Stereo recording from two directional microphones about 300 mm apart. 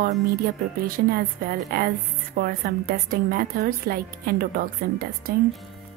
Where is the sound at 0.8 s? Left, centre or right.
Right.